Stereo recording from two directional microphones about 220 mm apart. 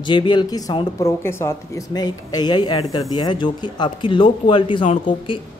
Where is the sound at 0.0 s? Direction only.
20° left (ahead or behind).